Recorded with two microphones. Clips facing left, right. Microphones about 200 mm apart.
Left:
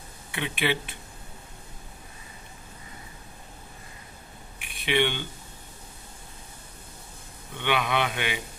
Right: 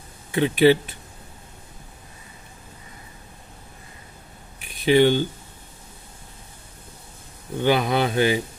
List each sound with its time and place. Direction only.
0.3 s speech: 40° right (ahead or behind)
4.6 s a sound: 40° right (ahead or behind)
7.5 s speech: 35° right (ahead or behind)